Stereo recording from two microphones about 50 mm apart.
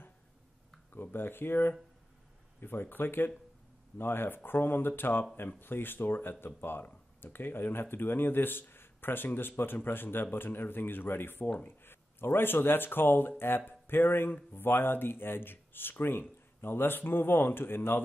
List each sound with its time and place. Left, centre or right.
0.9 s speech: left